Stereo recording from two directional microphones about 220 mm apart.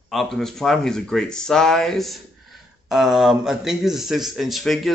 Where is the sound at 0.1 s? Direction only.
Centre (ahead or behind).